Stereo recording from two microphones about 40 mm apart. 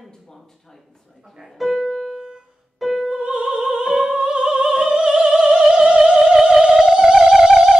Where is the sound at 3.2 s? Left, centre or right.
Right.